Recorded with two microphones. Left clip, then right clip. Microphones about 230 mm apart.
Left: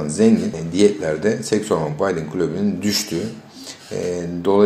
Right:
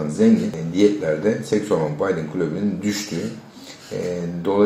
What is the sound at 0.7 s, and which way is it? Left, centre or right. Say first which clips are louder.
Speech: left 1 dB; left.